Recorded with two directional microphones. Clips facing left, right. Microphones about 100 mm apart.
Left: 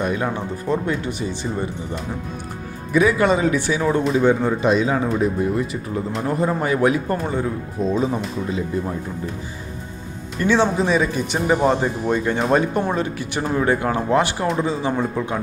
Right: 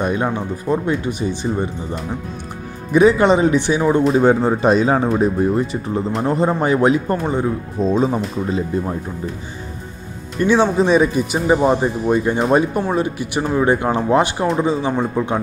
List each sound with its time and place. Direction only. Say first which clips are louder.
0.0 s speech: right 3 dB; 20° right (ahead or behind)
2.9 s speech: right 4 dB; 25° right (ahead or behind)
4.1 s speech: right 3 dB; 40° right (ahead or behind)
10.4 s speech: right 3 dB; 15° right (ahead or behind)